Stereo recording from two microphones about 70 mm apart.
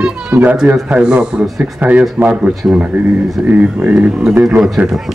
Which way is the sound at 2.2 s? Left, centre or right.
Centre.